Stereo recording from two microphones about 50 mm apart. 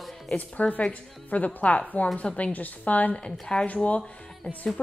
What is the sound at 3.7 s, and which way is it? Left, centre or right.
Speech, left.